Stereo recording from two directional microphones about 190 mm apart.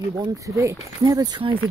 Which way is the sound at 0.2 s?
20° right (ahead or behind).